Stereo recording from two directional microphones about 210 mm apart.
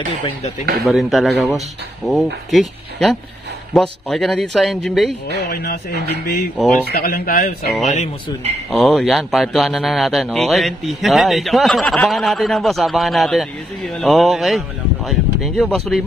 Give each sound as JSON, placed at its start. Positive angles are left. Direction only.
{"t": 0.8, "sound": "a man's voice", "side_deg": 0}
{"t": 5.5, "sound": "speech", "side_deg": 45}
{"t": 6.9, "sound": "speech", "side_deg": 45}
{"t": 8.7, "sound": "a man's voice", "side_deg": 0}